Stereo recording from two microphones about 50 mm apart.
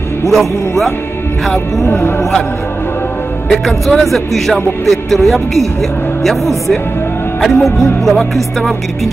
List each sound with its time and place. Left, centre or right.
0.3 s speech: centre
1.9 s music: left
3.6 s speech: centre